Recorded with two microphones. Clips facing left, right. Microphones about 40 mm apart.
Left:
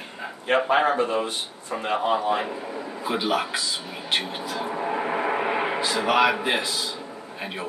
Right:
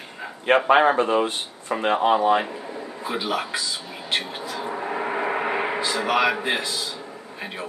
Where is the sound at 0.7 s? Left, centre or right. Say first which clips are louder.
Right 4 dB; right.